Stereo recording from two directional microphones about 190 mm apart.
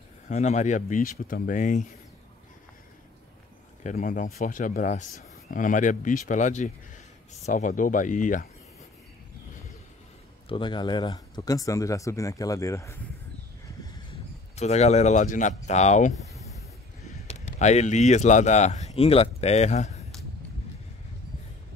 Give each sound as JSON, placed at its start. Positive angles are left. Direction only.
{"t": 0.3, "sound": "speech", "side_deg": 40}
{"t": 3.8, "sound": "speech", "side_deg": 40}
{"t": 10.5, "sound": "speech", "side_deg": 25}
{"t": 14.5, "sound": "speech", "side_deg": 35}
{"t": 17.3, "sound": "speech", "side_deg": 40}